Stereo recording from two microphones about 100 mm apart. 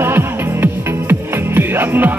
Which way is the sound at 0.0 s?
20° right (ahead or behind).